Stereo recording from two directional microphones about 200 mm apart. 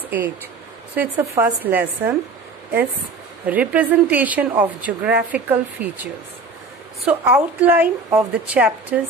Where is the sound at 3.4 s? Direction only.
5° right (ahead or behind).